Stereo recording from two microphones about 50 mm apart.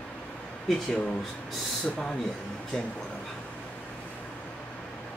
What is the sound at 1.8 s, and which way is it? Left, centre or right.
Speech, centre.